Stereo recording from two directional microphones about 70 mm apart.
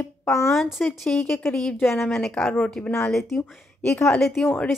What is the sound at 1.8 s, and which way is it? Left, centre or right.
Speech, left.